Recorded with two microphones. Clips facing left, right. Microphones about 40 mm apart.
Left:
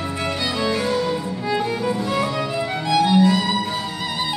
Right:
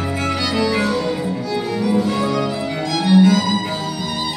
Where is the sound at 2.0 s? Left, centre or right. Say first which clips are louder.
Right 3 dB; left.